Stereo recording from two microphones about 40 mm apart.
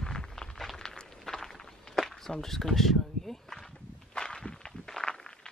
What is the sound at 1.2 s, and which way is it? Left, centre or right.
Walk, centre.